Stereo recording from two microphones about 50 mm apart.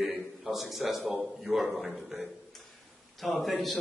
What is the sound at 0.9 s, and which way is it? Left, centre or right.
A man's voice, centre.